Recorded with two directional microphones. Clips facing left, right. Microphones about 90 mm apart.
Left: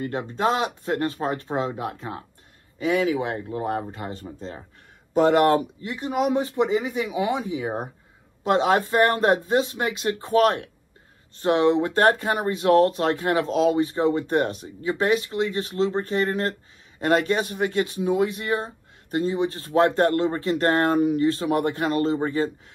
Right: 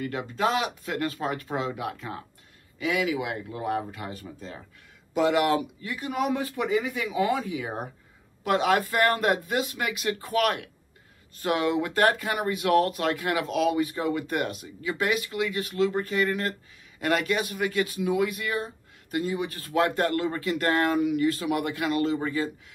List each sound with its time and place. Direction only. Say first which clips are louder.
0.0 s speech: left 3 dB; 30° left (ahead or behind)
5.1 s speech: left 5 dB; 40° left (ahead or behind)
5.9 s speech: left 4 dB; 25° left (ahead or behind)